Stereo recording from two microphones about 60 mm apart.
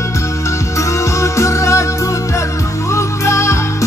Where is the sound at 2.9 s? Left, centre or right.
Left.